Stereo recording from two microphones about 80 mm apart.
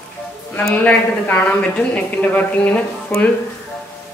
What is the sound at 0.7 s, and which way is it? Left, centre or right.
Speech, centre.